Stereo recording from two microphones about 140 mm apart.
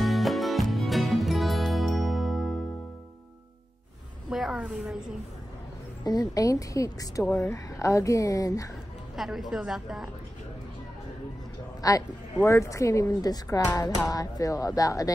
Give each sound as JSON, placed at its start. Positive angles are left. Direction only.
{"t": 0.0, "sound": "music", "side_deg": 0}
{"t": 4.3, "sound": "a woman's voice", "side_deg": -5}
{"t": 6.0, "sound": "music", "side_deg": 25}
{"t": 9.1, "sound": "speech", "side_deg": 0}
{"t": 11.8, "sound": "music", "side_deg": 25}